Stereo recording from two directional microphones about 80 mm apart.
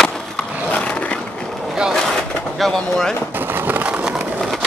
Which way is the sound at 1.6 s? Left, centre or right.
Centre.